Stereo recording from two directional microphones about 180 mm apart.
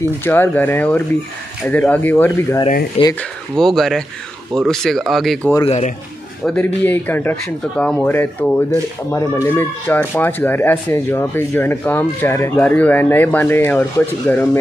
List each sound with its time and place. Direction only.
0.2 s speech: 10° left (ahead or behind)
5.7 s a man's voice: 40° left (ahead or behind)
6.4 s speech: 5° left (ahead or behind)